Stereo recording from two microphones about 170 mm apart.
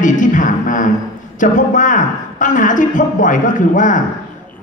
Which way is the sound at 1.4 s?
50° left (ahead or behind).